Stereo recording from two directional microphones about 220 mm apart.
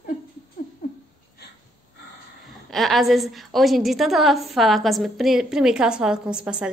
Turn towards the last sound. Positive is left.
turn(degrees=-5)  # may be behind; listen again after turning